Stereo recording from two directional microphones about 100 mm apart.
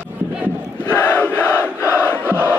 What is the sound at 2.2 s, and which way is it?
Crowd, 20° right (ahead or behind).